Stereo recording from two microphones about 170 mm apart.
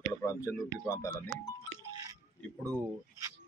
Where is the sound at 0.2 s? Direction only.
15° left (ahead or behind).